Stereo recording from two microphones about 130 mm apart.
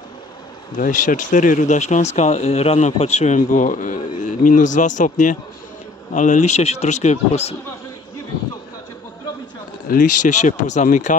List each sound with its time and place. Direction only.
0.7 s a man's voice: 90° left; by 7.5 s 55° left (ahead or behind)
9.8 s speech: 90° left; by 11.1 s 65° left (ahead or behind)